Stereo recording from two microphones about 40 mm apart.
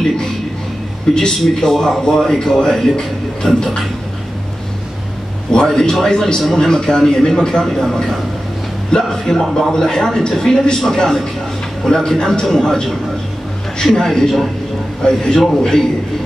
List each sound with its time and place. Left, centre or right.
1.1 s speech: centre
5.7 s speech: centre
13.9 s speech: centre
15.0 s a man's voice: centre